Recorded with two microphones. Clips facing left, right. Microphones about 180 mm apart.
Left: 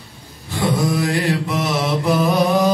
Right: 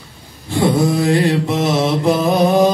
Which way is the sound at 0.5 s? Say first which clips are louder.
Right 5 dB; 30° right (ahead or behind).